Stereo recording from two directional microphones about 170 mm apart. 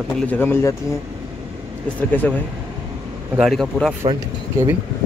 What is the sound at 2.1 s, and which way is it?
Speech, 10° left (ahead or behind).